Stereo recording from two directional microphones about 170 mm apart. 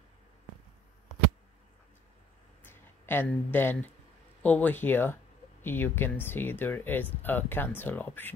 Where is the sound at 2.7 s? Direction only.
10° left (ahead or behind).